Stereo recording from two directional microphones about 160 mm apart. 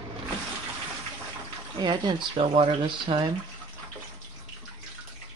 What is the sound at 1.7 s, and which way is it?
Speech, 30° right (ahead or behind).